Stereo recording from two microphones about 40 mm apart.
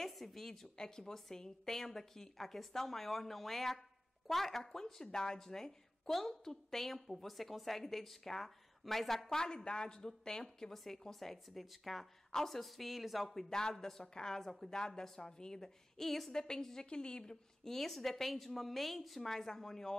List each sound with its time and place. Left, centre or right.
0.0 s a woman's voice: centre; by 17.4 s left
17.6 s a woman's voice: centre